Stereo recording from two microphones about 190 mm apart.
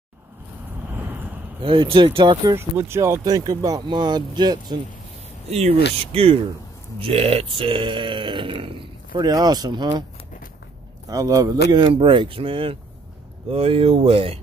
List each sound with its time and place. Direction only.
1.0 s a sound: 10° right (ahead or behind)
1.6 s speech: 30° right (ahead or behind)
2.9 s speech: 15° right (ahead or behind)
5.5 s speech: 35° right (ahead or behind)
11.1 s a man's voice: 20° right (ahead or behind)